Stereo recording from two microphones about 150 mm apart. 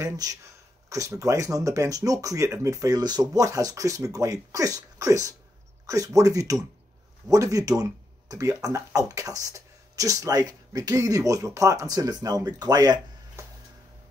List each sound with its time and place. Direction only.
0.0 s speech: 25° right (ahead or behind)